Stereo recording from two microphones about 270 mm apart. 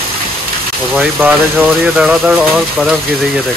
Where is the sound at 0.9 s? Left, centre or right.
Centre.